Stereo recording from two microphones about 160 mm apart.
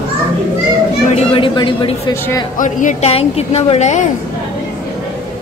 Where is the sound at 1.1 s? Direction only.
35° left (ahead or behind).